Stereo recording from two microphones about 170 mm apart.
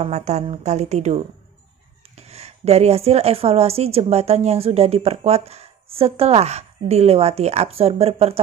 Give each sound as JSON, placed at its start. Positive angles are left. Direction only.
{"t": 0.0, "sound": "a woman's voice", "side_deg": -40}